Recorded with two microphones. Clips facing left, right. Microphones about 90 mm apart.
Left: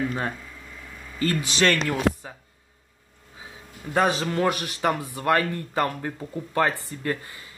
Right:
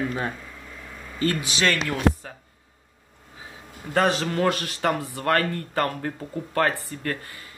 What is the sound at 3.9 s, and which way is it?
A man's voice, 15° left (ahead or behind).